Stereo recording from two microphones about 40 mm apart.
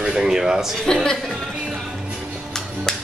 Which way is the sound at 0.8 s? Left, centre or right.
Centre.